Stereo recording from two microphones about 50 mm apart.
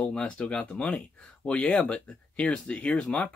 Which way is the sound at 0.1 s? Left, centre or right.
Centre.